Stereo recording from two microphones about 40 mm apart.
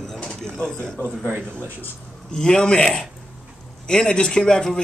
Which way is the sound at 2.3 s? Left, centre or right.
Left.